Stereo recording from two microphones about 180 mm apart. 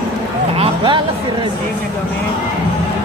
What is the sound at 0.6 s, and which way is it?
Music, 25° right (ahead or behind).